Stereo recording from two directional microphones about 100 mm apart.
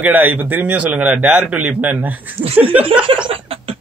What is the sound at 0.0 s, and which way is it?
A man's voice, 15° right (ahead or behind).